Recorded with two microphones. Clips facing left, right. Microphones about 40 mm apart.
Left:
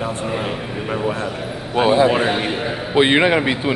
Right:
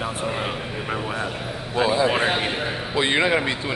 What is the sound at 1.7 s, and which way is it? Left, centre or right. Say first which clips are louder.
Speech: left 6 dB; left.